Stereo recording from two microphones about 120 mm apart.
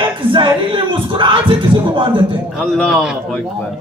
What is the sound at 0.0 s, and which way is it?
Music, 45° right (ahead or behind).